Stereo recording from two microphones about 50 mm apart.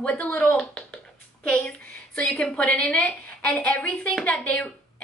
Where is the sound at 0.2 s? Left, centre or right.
Left.